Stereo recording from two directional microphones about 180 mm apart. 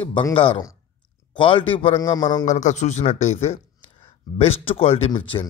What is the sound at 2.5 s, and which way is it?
A man's voice, 40° left (ahead or behind).